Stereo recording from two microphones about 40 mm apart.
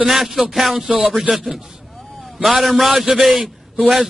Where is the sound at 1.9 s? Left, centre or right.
Centre.